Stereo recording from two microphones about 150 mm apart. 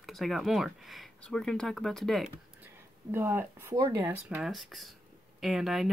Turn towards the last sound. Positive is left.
turn(degrees=0)  # may be behind; listen again after turning